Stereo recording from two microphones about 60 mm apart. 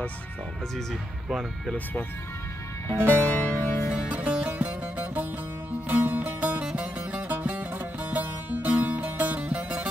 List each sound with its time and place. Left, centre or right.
2.9 s music: left
3.6 s music: left
3.9 s music: right